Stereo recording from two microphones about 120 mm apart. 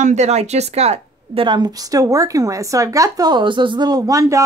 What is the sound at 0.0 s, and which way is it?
Speech, 70° right (ahead or behind).